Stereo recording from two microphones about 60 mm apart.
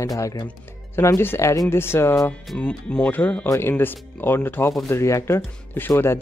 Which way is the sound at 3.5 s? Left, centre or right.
Left.